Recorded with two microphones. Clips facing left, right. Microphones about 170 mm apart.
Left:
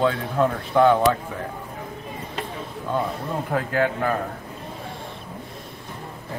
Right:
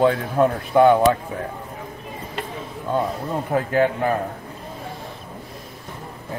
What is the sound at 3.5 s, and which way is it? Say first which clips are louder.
Speech: right 4 dB; 20° right (ahead or behind).